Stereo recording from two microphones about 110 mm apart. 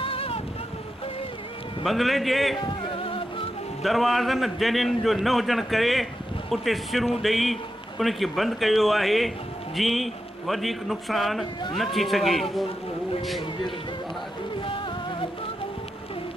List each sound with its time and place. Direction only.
0.0 s boat: 60° left (ahead or behind)
1.9 s a man's voice: centre (ahead or behind)
2.6 s music: 50° left (ahead or behind)
3.8 s a man's voice: centre (ahead or behind)
14.6 s music: 50° left (ahead or behind)